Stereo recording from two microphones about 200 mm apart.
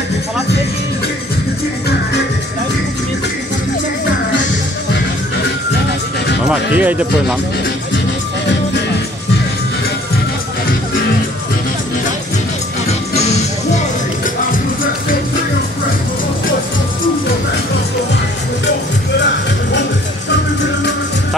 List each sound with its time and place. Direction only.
6.4 s speech: 5° right (ahead or behind)
13.1 s music: 35° left (ahead or behind)